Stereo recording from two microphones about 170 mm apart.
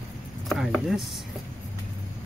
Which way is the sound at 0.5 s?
Centre (ahead or behind).